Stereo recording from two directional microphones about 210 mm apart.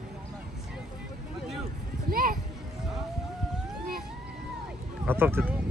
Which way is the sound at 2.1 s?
45° right (ahead or behind).